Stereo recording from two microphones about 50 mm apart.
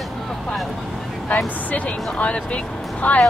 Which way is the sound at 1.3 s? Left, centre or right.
Left.